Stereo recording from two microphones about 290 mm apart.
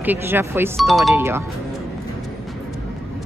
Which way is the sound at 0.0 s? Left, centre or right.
Centre.